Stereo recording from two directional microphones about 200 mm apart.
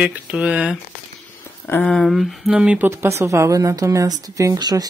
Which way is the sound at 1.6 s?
10° left (ahead or behind).